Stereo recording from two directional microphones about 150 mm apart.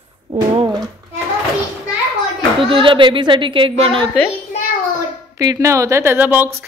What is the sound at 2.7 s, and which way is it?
A woman's voice, 35° right (ahead or behind).